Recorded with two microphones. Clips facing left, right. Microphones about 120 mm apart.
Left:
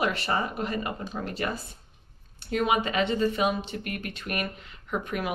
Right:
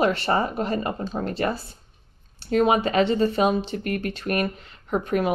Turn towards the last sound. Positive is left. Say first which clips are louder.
# right 7 dB
turn(degrees=-35)  # may be behind; listen again after turning